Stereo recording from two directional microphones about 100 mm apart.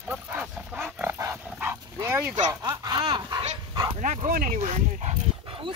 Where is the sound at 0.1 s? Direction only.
15° right (ahead or behind).